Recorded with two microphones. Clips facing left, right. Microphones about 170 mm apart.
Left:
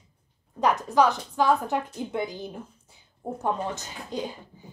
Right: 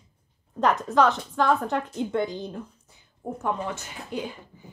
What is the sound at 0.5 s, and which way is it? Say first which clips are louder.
Speech: even; centre (ahead or behind).